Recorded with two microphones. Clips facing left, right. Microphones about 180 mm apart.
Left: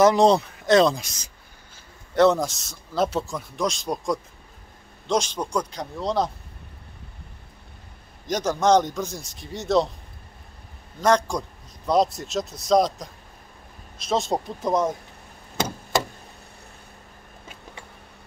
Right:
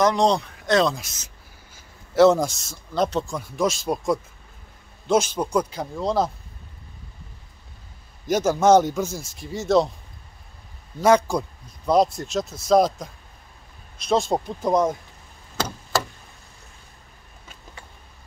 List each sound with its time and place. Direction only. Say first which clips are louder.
0.0 s a man's voice: left 3 dB; 5° left (ahead or behind)
8.3 s a man's voice: right 3 dB; 5° right (ahead or behind)
11.0 s a man's voice: right 3 dB; 5° right (ahead or behind)
15.5 s a sound: left 1 dB; 20° left (ahead or behind)